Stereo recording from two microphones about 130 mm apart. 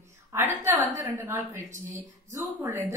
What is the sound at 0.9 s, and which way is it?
A woman's voice, 20° right (ahead or behind).